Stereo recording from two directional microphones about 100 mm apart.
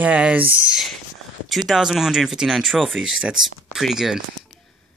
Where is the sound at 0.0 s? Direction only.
15° right (ahead or behind).